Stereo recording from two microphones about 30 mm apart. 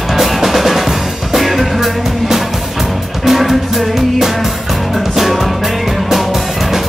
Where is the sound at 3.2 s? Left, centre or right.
Centre.